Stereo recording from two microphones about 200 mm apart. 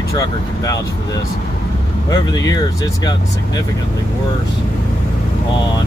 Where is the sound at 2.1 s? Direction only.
20° left (ahead or behind).